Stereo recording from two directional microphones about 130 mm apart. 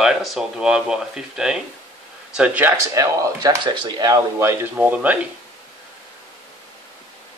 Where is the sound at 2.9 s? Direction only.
25° right (ahead or behind).